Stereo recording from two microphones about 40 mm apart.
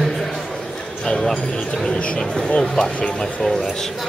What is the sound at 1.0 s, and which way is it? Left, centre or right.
Speech, left.